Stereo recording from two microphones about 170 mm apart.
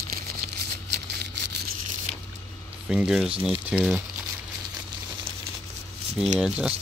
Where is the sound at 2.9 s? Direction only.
5° right (ahead or behind).